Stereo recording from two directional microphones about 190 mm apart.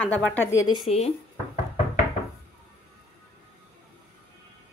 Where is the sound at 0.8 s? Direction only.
35° left (ahead or behind).